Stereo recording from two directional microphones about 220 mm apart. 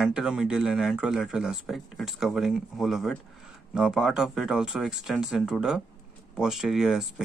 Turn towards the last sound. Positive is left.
turn(degrees=0)  # may be behind; listen again after turning